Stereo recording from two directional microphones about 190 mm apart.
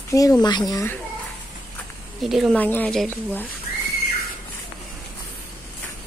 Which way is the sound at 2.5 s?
10° left (ahead or behind).